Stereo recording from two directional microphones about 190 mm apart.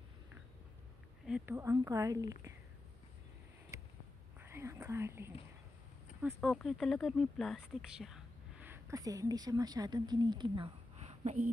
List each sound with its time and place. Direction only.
1.2 s a woman's voice: 5° right (ahead or behind)
4.4 s whispering: 15° right (ahead or behind)
6.4 s speech: centre (ahead or behind); by 11.4 s 35° right (ahead or behind)